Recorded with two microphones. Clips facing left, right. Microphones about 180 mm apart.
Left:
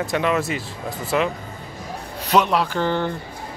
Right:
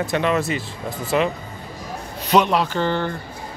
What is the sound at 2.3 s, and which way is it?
Speech, 5° left (ahead or behind).